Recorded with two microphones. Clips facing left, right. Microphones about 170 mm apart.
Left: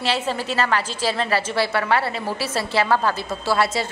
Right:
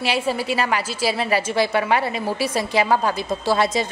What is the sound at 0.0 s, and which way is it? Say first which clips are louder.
A woman's voice: right 1 dB; 10° right (ahead or behind).